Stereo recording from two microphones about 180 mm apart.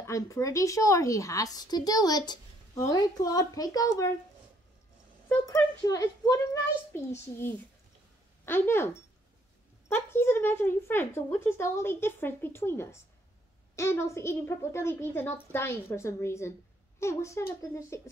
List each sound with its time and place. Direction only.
0.0 s a woman's voice: 15° left (ahead or behind)
5.5 s speech: 15° left (ahead or behind)